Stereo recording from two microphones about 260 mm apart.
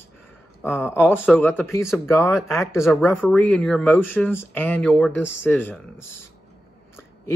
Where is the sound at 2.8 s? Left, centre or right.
Centre.